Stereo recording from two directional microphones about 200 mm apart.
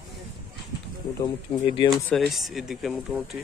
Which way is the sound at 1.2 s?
25° left (ahead or behind).